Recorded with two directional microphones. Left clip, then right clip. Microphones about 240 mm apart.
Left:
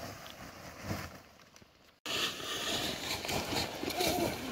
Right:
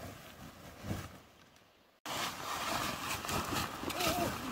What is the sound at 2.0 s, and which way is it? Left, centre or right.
Vehicle, centre.